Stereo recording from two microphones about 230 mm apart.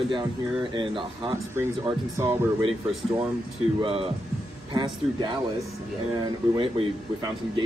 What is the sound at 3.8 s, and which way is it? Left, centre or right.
Speech, right.